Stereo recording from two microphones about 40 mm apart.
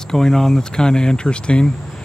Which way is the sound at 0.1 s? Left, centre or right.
Centre.